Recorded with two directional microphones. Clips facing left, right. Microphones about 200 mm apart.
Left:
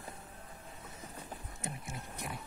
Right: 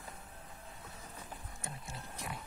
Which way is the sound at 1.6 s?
20° left (ahead or behind).